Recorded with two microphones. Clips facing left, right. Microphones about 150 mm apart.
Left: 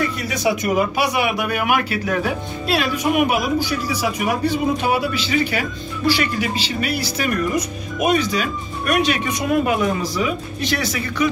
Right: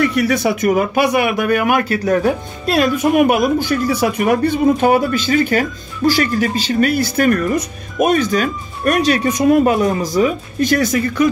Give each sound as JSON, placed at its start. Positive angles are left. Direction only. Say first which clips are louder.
{"t": 0.0, "sound": "speech", "louder": "right 6 dB", "side_deg": -70}